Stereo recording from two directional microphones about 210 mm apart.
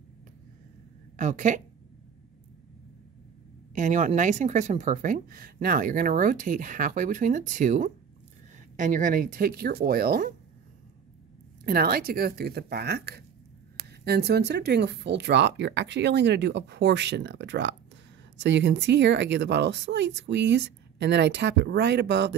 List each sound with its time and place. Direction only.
1.1 s a woman's voice: 35° right (ahead or behind)
3.7 s speech: 35° right (ahead or behind)
11.6 s speech: 45° right (ahead or behind)